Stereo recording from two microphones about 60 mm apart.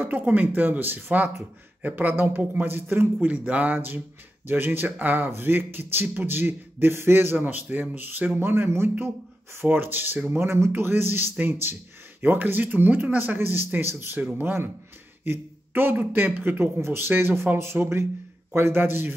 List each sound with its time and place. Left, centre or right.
0.3 s a man's voice: right
3.2 s a man's voice: right
10.3 s a man's voice: right